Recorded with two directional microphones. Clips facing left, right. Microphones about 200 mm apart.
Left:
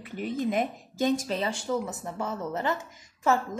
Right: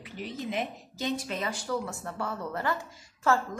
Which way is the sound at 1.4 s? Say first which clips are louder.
Left 3 dB; 25° left (ahead or behind).